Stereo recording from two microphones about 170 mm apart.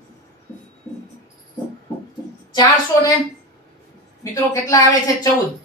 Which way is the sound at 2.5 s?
25° left (ahead or behind).